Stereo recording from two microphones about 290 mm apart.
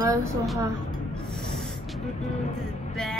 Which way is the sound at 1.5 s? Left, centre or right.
Centre.